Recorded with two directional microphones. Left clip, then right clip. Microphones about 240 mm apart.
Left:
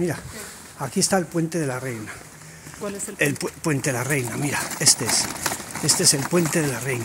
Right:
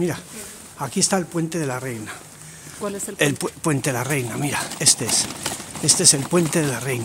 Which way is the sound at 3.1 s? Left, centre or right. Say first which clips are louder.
Right 2 dB; centre.